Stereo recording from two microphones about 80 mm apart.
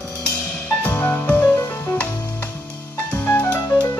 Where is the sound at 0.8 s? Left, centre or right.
Left.